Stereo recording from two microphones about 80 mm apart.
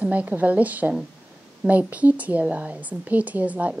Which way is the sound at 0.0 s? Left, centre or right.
Centre.